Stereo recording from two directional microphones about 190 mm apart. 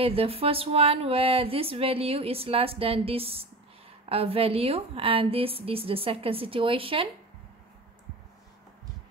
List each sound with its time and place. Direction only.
0.0 s a woman's voice: 30° right (ahead or behind)